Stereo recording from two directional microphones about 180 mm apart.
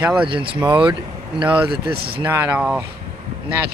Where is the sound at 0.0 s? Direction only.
5° right (ahead or behind).